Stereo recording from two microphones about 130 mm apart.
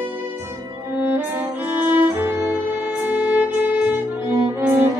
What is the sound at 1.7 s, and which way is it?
Violin, 15° right (ahead or behind).